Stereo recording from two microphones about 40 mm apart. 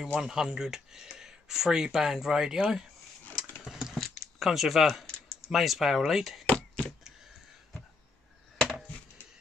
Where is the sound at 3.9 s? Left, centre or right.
Centre.